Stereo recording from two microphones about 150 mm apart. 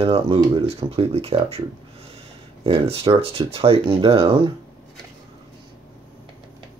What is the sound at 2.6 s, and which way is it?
Speech, 40° right (ahead or behind).